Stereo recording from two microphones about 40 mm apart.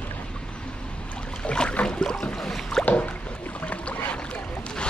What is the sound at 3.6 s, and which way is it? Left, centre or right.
Boat, left.